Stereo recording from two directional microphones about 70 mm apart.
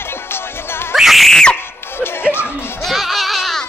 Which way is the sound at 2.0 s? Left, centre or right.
Left.